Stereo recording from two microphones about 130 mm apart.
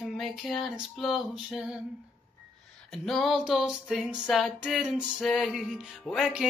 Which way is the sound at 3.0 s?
Centre (ahead or behind).